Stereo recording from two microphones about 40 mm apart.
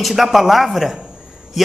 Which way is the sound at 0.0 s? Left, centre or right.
Centre.